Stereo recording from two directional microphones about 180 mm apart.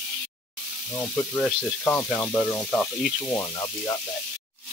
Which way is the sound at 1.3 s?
10° left (ahead or behind).